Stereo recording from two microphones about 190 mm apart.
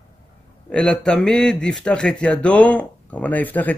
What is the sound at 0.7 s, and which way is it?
A man's voice, 5° left (ahead or behind).